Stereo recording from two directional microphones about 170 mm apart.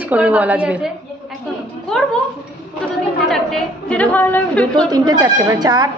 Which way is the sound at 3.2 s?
5° left (ahead or behind).